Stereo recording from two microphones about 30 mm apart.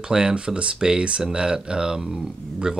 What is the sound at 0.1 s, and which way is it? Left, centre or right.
Speech, right.